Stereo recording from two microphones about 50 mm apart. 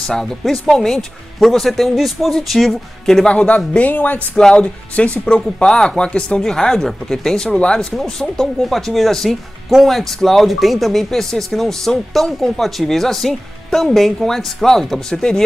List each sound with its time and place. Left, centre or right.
0.0 s speech: centre
3.3 s speech: left
4.4 s speech: centre
7.9 s speech: centre